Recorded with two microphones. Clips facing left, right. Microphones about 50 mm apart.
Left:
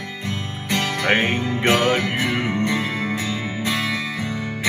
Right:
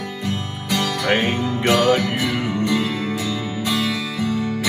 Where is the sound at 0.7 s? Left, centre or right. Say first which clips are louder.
Even; left.